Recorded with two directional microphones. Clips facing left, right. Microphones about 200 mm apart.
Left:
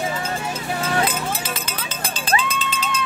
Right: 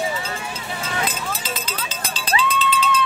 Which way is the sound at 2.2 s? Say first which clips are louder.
Right 2 dB; 45° left (ahead or behind).